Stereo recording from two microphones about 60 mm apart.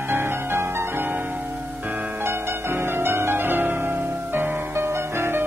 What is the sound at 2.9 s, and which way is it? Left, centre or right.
Music, right.